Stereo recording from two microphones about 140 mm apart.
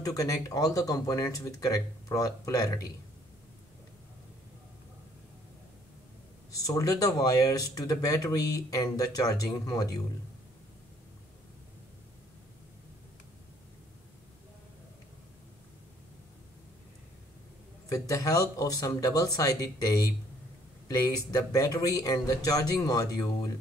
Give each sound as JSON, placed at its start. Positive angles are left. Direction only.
{"t": 0.0, "sound": "speech", "side_deg": 25}
{"t": 6.5, "sound": "speech", "side_deg": 25}
{"t": 17.8, "sound": "speech", "side_deg": 25}